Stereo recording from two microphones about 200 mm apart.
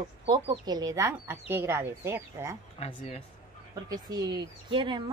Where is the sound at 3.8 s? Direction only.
20° right (ahead or behind).